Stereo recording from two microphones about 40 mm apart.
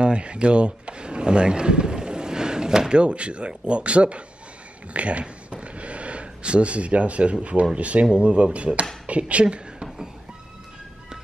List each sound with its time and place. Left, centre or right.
0.0 s speech: right
2.9 s speech: right
4.9 s a sound: right
7.7 s a woman's voice: right